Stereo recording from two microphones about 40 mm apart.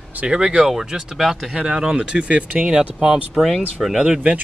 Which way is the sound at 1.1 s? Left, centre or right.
Centre.